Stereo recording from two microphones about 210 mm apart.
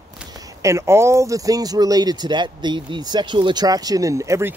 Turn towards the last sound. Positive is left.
turn(degrees=-15)  # may be behind; listen again after turning